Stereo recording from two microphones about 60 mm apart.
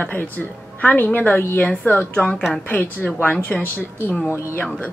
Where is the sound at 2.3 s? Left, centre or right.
Centre.